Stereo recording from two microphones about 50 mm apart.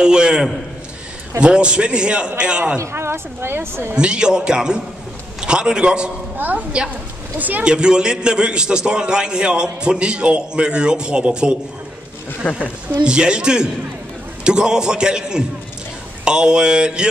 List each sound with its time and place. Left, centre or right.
0.0 s a man's voice: centre
2.8 s speech: right
3.9 s a man's voice: centre
6.3 s a woman's voice: right
7.6 s a man's voice: centre
12.4 s a woman's voice: left
13.0 s a man's voice: centre